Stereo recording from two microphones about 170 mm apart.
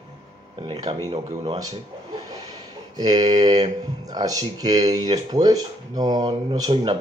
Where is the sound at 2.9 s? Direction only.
25° right (ahead or behind).